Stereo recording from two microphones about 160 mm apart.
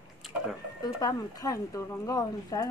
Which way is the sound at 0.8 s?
25° left (ahead or behind).